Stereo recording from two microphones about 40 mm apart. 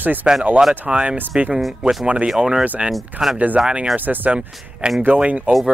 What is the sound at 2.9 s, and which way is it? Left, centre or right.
Speech, centre.